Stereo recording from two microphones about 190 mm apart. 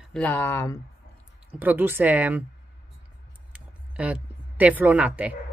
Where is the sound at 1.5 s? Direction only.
10° right (ahead or behind).